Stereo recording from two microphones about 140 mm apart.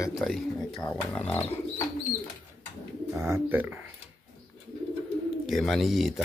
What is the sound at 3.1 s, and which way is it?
Speech, 20° right (ahead or behind).